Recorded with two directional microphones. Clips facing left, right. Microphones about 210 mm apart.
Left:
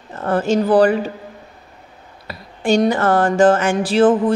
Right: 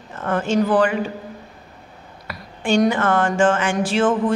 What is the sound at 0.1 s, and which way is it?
Speech, 35° left (ahead or behind).